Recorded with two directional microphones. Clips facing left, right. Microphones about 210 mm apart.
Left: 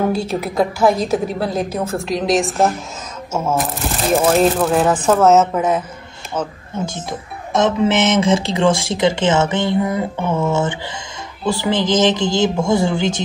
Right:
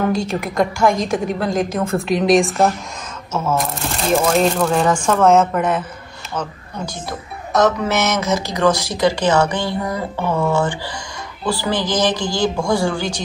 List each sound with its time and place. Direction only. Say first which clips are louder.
0.1 s a woman's voice: left 1 dB; 5° left (ahead or behind)
6.9 s speech: left 1 dB; 25° left (ahead or behind)